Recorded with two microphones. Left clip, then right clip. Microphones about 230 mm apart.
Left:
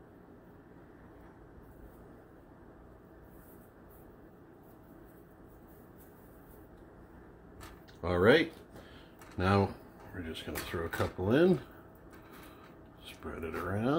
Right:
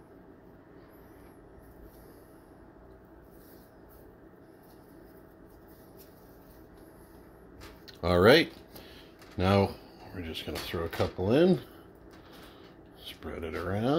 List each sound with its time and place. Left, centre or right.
8.0 s speech: right
9.4 s speech: right
13.0 s speech: right